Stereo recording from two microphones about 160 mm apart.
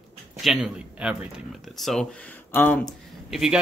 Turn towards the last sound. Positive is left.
turn(degrees=-5)  # may be behind; listen again after turning